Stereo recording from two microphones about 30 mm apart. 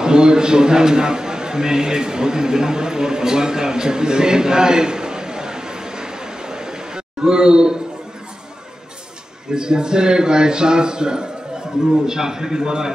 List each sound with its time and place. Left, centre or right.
0.0 s a man's voice: right
9.5 s a man's voice: right